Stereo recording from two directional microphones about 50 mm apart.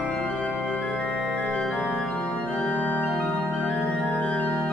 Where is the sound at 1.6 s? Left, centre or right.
Centre.